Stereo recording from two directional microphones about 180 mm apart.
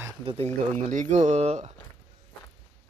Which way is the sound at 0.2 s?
30° right (ahead or behind).